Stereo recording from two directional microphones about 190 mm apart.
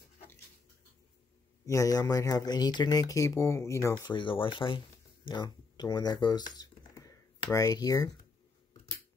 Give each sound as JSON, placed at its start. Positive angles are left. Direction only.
{"t": 1.7, "sound": "speech", "side_deg": 15}